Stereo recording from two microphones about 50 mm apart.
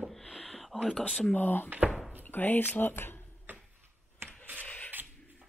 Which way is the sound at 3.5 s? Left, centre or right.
Right.